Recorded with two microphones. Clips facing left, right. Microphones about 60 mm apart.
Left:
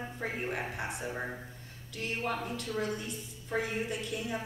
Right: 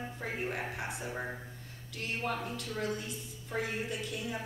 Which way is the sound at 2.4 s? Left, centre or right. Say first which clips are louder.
Left 2 dB; left.